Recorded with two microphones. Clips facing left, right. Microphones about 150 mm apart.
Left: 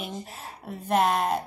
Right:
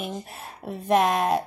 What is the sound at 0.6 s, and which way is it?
Speech, 65° right (ahead or behind).